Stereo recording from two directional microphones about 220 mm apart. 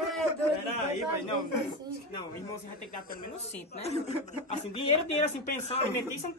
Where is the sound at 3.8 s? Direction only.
30° left (ahead or behind).